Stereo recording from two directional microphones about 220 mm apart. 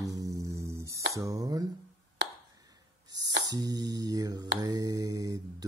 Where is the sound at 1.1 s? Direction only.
15° right (ahead or behind).